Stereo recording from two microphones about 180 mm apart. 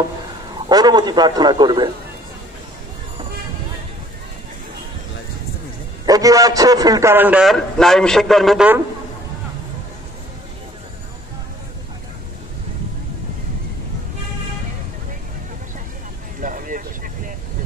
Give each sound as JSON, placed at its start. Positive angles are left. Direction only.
{"t": 0.7, "sound": "a man's voice", "side_deg": -20}
{"t": 6.0, "sound": "a man's voice", "side_deg": -20}
{"t": 16.3, "sound": "vehicle", "side_deg": -50}